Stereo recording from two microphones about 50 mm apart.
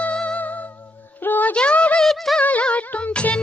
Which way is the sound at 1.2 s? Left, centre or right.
Left.